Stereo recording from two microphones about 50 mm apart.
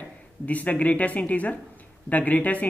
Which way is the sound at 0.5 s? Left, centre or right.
Left.